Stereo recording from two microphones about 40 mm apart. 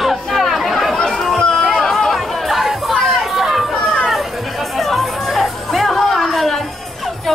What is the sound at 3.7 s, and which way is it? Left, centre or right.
Chatter, left.